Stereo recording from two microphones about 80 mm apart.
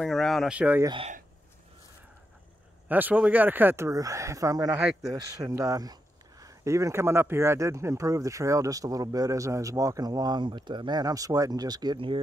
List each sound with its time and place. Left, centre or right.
0.0 s speech: centre
0.5 s speech: centre
2.9 s speech: right
3.9 s speech: right
4.7 s speech: centre
5.5 s speech: right